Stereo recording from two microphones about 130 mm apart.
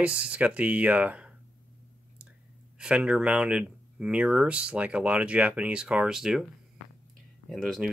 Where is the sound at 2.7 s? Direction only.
10° right (ahead or behind).